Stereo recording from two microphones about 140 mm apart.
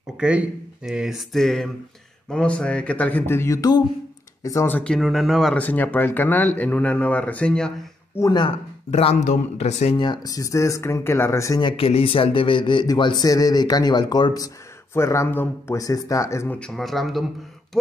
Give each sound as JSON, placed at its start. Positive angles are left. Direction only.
{"t": 0.2, "sound": "speech", "side_deg": -5}
{"t": 5.6, "sound": "speech", "side_deg": 10}
{"t": 8.2, "sound": "speech", "side_deg": 30}
{"t": 8.9, "sound": "a man's voice", "side_deg": 55}
{"t": 9.9, "sound": "speech", "side_deg": 30}
{"t": 11.6, "sound": "speech", "side_deg": 40}
{"t": 16.5, "sound": "speech", "side_deg": 5}